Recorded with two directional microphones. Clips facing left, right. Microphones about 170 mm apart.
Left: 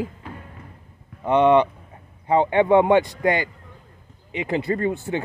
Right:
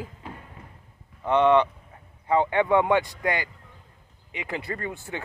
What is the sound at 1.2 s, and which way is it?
Speech, 15° left (ahead or behind).